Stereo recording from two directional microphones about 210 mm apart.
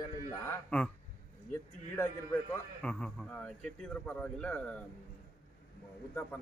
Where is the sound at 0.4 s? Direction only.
10° left (ahead or behind).